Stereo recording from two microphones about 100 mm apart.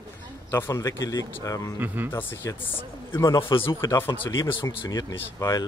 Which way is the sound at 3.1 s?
30° left (ahead or behind).